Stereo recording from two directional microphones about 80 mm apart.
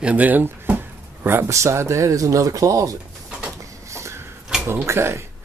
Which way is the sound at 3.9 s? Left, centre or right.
Right.